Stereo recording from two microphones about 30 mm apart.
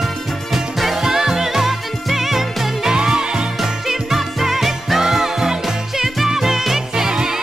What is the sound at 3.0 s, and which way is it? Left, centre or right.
Music, right.